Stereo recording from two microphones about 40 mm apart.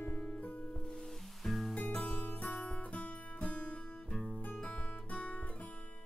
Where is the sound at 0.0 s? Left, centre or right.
Left.